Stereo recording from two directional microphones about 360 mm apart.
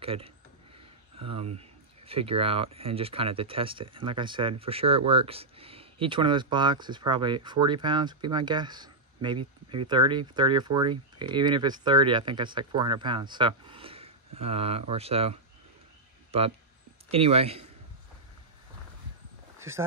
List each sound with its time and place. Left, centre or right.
0.0 s speech: centre
16.3 s a sound: centre
17.1 s speech: centre